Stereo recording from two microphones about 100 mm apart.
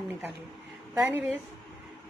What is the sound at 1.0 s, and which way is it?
Speech, 15° right (ahead or behind).